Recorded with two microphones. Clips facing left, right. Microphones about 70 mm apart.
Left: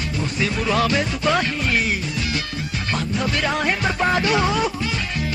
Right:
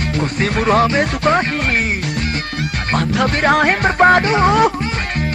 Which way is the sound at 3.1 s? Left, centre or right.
Right.